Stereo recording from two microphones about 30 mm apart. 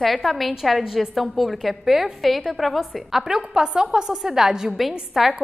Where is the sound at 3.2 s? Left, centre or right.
Right.